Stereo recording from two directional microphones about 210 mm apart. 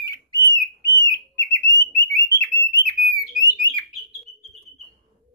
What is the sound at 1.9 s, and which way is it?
Alarm, 15° left (ahead or behind).